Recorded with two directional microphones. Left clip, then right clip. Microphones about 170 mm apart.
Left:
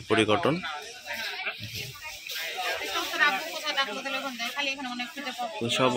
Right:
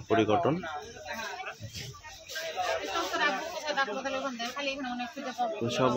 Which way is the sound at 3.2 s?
55° right (ahead or behind).